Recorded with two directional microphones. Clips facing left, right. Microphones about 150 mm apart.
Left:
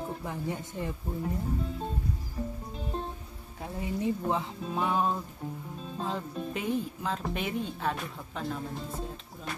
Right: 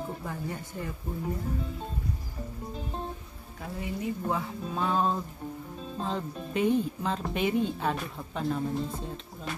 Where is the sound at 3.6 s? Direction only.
25° left (ahead or behind).